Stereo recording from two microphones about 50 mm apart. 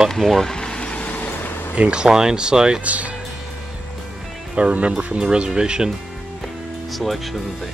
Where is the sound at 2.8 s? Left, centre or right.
Right.